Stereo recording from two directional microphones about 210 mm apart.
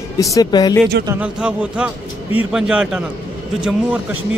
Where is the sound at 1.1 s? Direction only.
5° right (ahead or behind).